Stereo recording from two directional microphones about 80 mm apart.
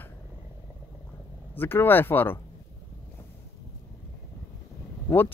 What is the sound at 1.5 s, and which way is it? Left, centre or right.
Speech, left.